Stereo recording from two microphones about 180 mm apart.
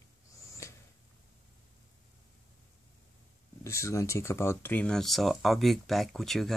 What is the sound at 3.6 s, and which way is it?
Speech, 15° left (ahead or behind).